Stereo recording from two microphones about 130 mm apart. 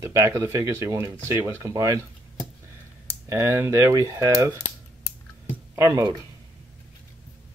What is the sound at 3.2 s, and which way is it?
Speech, 20° right (ahead or behind).